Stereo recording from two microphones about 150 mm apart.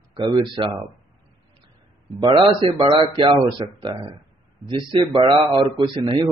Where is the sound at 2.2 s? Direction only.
30° right (ahead or behind).